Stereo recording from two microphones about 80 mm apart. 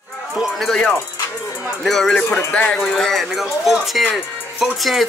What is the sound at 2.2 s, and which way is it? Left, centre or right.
Music, left.